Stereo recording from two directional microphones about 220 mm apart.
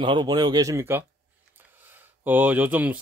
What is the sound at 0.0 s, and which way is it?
Speech, 20° right (ahead or behind).